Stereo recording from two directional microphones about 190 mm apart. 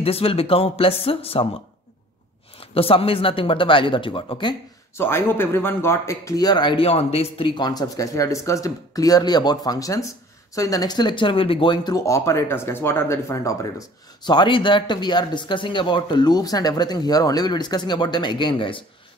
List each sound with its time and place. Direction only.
0.0 s speech: 30° left (ahead or behind)
2.6 s speech: 30° left (ahead or behind)
4.9 s speech: 10° left (ahead or behind)